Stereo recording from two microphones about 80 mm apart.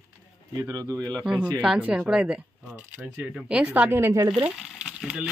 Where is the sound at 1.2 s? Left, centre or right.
Centre.